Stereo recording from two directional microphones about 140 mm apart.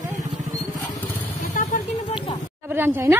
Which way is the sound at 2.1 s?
35° left (ahead or behind).